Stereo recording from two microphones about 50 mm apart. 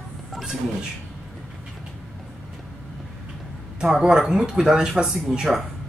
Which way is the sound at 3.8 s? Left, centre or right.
Centre.